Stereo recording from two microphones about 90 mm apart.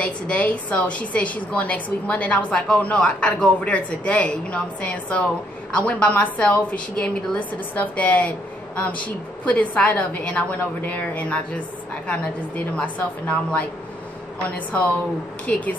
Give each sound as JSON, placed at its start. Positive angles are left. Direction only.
{"t": 0.0, "sound": "a woman's voice", "side_deg": 15}
{"t": 15.4, "sound": "a woman's voice", "side_deg": 15}